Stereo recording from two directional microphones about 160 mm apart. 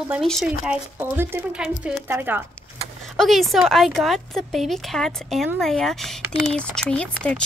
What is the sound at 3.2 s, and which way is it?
Speech, centre (ahead or behind).